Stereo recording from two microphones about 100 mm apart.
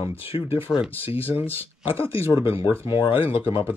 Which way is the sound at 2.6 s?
45° left (ahead or behind).